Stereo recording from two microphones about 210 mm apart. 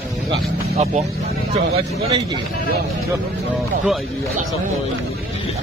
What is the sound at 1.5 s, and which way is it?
Speech, 30° right (ahead or behind).